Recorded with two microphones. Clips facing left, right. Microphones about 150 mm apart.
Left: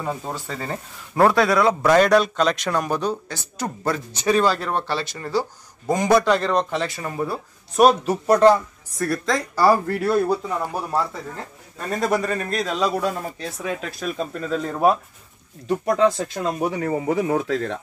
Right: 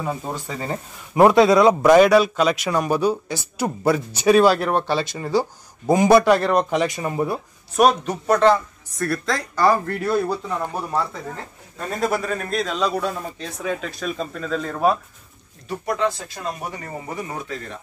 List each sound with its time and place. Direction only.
0.0 s speech: 5° right (ahead or behind)
7.7 s a man's voice: 5° left (ahead or behind)
9.0 s a man's voice: centre (ahead or behind)
16.7 s speech: 90° left